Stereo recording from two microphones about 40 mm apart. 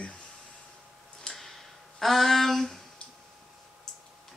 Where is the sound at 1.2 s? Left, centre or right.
Centre.